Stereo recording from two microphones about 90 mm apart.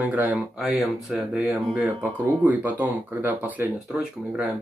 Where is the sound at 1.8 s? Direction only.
30° right (ahead or behind).